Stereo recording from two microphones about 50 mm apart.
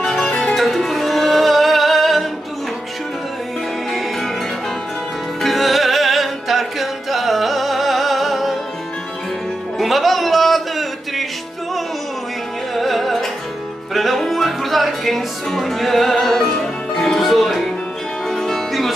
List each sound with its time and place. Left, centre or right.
0.0 s music: centre
5.4 s music: centre
9.8 s a sound: centre
12.7 s music: centre
17.2 s music: centre